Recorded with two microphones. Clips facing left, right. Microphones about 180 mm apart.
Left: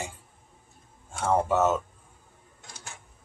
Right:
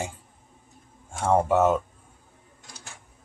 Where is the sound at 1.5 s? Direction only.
10° right (ahead or behind).